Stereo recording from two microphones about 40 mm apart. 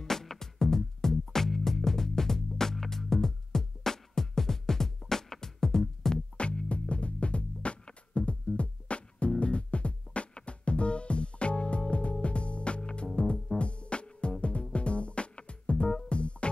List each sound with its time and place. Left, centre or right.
0.0 s music: centre
6.1 s music: left